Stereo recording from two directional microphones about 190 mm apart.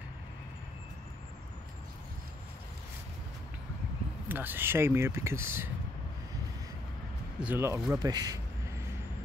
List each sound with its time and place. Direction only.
4.3 s speech: 10° right (ahead or behind)
7.3 s speech: 10° right (ahead or behind)
7.9 s a sound: 20° right (ahead or behind)